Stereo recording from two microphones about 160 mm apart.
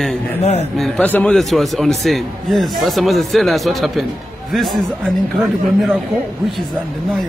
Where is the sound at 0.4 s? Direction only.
45° left (ahead or behind).